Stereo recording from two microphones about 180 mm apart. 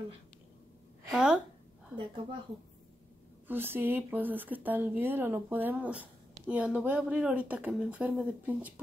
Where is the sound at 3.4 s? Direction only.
10° right (ahead or behind).